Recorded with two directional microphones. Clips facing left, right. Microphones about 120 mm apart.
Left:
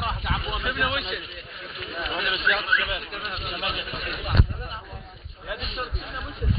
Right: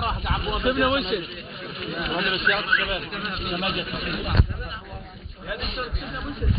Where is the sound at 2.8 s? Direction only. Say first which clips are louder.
Right 2 dB; 45° right (ahead or behind).